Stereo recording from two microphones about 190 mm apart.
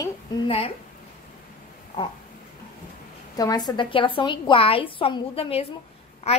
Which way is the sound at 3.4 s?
20° left (ahead or behind).